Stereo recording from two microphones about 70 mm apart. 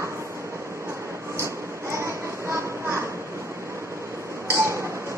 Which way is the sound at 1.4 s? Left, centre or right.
Right.